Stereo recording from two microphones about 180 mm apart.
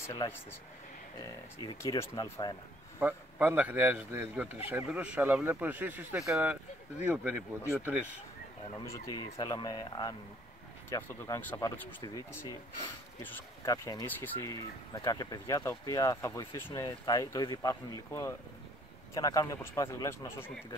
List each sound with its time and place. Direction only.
0.0 s speech: 15° left (ahead or behind)
1.6 s speech: 20° left (ahead or behind)
3.0 s speech: 10° right (ahead or behind)
8.7 s speech: 20° left (ahead or behind)